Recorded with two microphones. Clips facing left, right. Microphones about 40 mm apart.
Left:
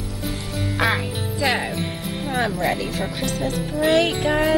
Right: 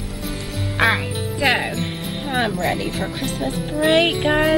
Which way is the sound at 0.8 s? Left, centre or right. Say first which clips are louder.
Right 4 dB; right.